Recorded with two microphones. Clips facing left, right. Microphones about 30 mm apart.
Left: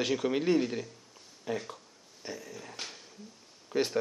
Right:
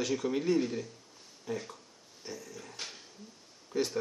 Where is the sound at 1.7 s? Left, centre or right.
Left.